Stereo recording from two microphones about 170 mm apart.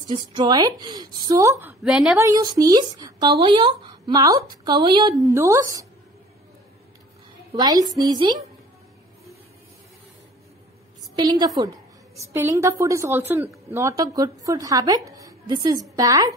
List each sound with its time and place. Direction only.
0.1 s speech: 25° right (ahead or behind)
1.8 s a woman's voice: 5° right (ahead or behind)
2.1 s speech: 20° right (ahead or behind)
7.5 s speech: 25° right (ahead or behind)
11.1 s a woman's voice: 25° right (ahead or behind)